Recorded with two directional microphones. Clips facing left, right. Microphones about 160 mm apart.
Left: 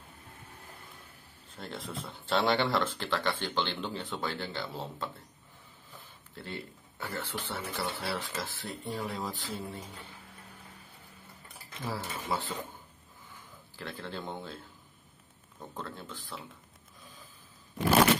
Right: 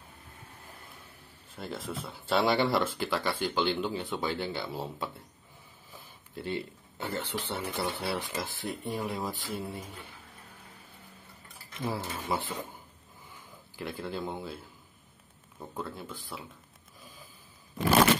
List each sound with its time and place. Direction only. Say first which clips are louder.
1.6 s speech: right 3 dB; 5° right (ahead or behind)
6.3 s speech: right 7 dB; 20° right (ahead or behind)
11.8 s speech: right 3 dB; 15° right (ahead or behind)
13.7 s speech: right 4 dB; 10° right (ahead or behind)
15.7 s speech: right 3 dB; 10° right (ahead or behind)